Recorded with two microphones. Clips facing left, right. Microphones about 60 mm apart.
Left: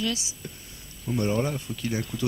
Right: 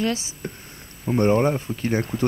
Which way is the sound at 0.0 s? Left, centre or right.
Right.